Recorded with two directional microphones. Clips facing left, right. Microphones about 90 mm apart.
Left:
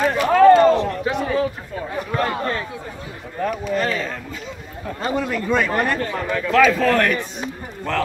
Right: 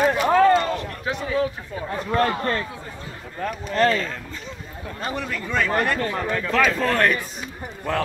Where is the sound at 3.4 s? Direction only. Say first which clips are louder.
Left 5 dB; 5° left (ahead or behind).